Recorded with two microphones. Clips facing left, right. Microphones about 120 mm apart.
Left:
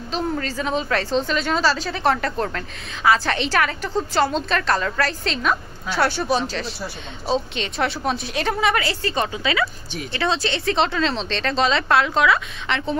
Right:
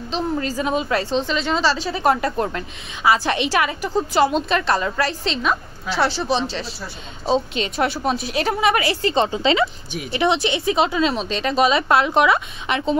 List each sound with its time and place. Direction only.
0.4 s a woman's voice: 10° right (ahead or behind)
7.5 s a woman's voice: 5° right (ahead or behind)
11.9 s a woman's voice: 20° right (ahead or behind)